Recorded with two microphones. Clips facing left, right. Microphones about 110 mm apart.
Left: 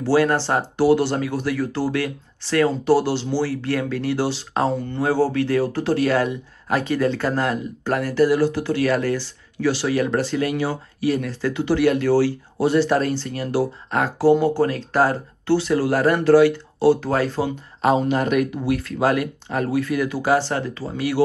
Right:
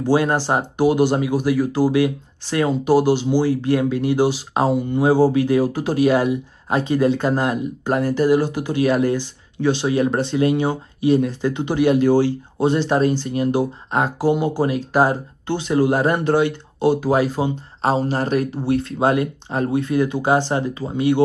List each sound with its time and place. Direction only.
0.0 s speech: 20° right (ahead or behind)
17.8 s speech: 30° right (ahead or behind)